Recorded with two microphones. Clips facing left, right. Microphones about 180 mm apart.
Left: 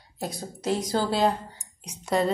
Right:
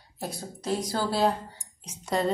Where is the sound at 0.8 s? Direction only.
20° left (ahead or behind).